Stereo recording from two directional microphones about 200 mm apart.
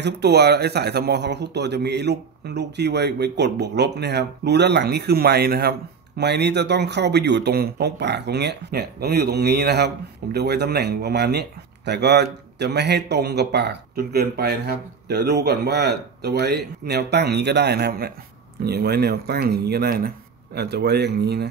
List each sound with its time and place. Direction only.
0.0 s speech: 55° right (ahead or behind)